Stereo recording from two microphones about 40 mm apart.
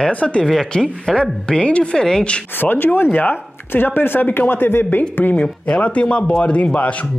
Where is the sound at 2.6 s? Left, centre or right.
Left.